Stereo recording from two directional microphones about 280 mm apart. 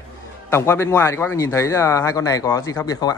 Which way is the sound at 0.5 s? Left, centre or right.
Centre.